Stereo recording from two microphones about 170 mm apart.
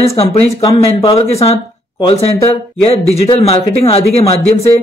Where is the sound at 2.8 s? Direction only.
35° left (ahead or behind).